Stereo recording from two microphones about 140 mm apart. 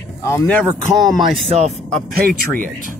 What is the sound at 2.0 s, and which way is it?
Speech, 80° right.